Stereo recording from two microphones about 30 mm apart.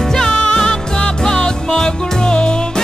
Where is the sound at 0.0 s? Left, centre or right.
Centre.